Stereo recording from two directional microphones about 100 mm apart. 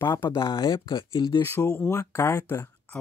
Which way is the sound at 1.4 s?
25° left (ahead or behind).